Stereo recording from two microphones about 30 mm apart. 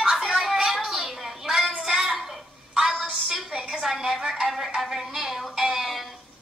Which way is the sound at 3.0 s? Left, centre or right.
Right.